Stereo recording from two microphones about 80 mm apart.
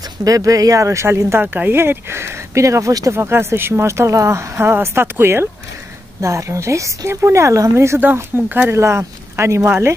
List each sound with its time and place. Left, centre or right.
0.2 s speech: right
1.4 s speech: right
3.1 s speech: right
8.0 s speech: right
8.7 s speech: right